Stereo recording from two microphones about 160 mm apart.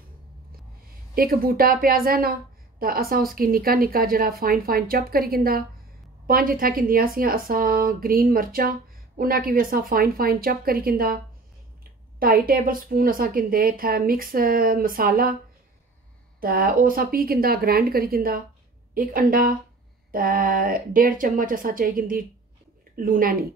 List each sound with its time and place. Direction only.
1.1 s a woman's voice: 65° right (ahead or behind)
12.2 s speech: 65° right (ahead or behind)
16.3 s a woman's voice: 65° right (ahead or behind)